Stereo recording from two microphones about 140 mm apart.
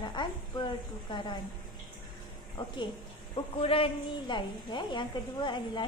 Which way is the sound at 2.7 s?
35° left (ahead or behind).